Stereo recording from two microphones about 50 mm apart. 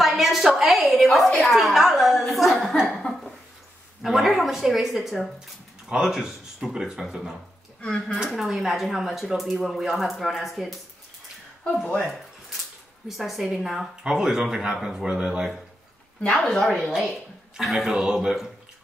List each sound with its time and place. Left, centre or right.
0.0 s a sound: centre
1.0 s a woman's voice: centre
2.9 s a sound: centre
4.0 s speech: centre
5.9 s speech: centre
7.8 s speech: left
8.4 s speech: centre
12.0 s a sound: centre
13.1 s speech: centre; by 15.4 s right
16.3 s a woman's voice: centre
16.7 s speech: centre